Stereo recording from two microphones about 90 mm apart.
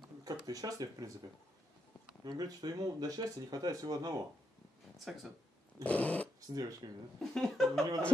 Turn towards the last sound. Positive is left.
turn(degrees=5)  # may be behind; listen again after turning